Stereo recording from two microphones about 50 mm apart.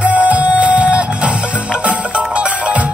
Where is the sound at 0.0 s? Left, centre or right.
Right.